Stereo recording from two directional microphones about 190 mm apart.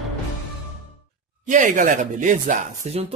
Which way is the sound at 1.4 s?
40° right (ahead or behind).